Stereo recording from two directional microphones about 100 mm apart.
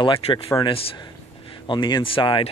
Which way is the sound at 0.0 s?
60° left (ahead or behind).